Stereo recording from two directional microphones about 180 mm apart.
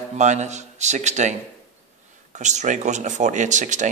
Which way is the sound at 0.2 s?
40° right (ahead or behind).